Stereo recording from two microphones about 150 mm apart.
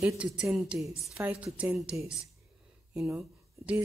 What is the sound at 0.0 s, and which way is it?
A woman's voice, 5° right (ahead or behind).